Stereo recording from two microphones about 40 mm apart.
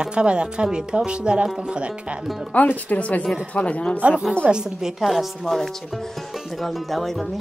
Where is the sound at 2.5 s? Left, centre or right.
Left.